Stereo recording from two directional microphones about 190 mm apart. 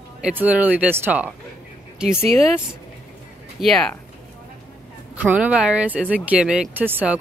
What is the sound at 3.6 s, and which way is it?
Speech, 5° left (ahead or behind).